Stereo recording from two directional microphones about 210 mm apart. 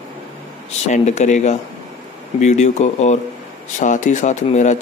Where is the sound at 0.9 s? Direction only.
35° left (ahead or behind).